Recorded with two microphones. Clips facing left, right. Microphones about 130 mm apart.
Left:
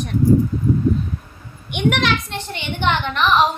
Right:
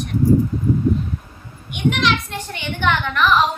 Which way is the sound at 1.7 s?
65° left (ahead or behind).